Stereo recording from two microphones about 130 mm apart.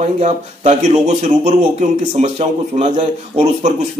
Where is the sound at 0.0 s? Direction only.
60° right (ahead or behind).